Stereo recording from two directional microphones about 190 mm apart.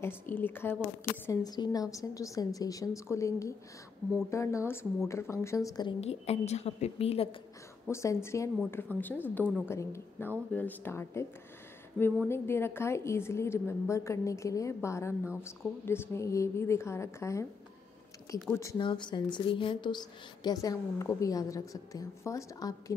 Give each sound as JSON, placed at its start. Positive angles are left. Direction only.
{"t": 0.0, "sound": "a woman's voice", "side_deg": 10}
{"t": 5.9, "sound": "a woman's voice", "side_deg": 35}
{"t": 7.9, "sound": "a woman's voice", "side_deg": 15}
{"t": 12.3, "sound": "a woman's voice", "side_deg": 10}
{"t": 18.5, "sound": "a woman's voice", "side_deg": 15}